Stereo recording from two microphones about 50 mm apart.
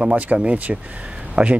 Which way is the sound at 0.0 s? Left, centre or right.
Right.